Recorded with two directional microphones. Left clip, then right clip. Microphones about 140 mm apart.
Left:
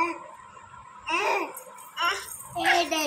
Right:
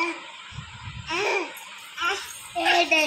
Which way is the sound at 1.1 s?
70° left (ahead or behind).